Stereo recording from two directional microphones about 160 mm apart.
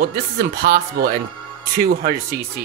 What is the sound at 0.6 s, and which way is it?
Speech, 80° right.